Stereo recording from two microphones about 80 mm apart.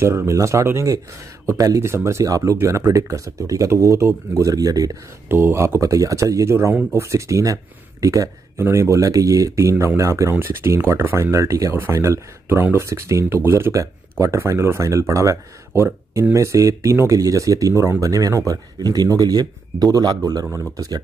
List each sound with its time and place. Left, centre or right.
0.0 s speech: right
5.3 s speech: right
10.3 s speech: right